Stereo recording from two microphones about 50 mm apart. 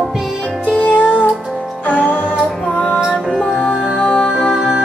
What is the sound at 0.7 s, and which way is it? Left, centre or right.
Music, left.